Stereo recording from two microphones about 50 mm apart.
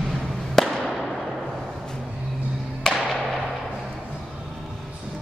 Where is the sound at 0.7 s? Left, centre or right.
Centre.